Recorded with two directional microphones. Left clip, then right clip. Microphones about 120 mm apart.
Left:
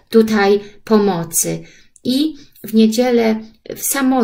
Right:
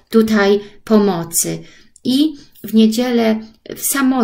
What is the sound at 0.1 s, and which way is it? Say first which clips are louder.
Speech: left 1 dB; 35° right (ahead or behind).